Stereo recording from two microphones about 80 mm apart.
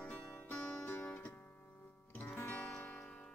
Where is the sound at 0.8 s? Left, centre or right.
Left.